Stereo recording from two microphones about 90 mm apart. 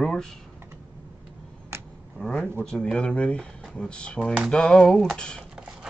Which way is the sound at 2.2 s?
10° left (ahead or behind).